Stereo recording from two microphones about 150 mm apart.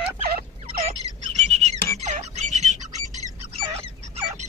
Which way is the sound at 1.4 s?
45° right (ahead or behind).